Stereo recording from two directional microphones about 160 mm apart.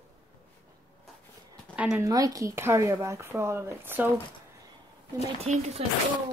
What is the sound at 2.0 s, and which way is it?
Speech, 20° right (ahead or behind).